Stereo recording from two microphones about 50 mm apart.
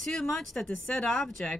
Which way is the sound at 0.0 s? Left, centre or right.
Centre.